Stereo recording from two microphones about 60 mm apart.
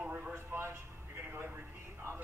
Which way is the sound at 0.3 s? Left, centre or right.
Right.